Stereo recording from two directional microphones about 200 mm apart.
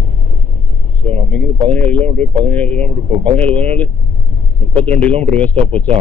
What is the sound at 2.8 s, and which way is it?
Speech, 25° right (ahead or behind).